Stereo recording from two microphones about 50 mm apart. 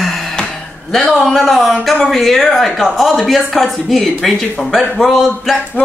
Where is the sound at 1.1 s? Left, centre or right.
Centre.